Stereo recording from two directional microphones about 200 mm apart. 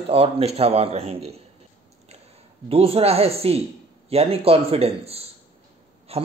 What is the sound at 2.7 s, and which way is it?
A man's voice, 30° right (ahead or behind).